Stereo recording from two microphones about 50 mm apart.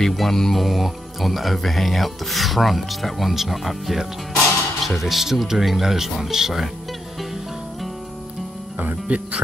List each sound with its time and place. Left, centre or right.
0.0 s speech: centre
9.0 s speech: right